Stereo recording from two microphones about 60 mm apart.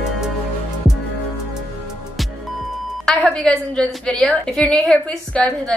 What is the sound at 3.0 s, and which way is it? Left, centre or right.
A woman's voice, centre.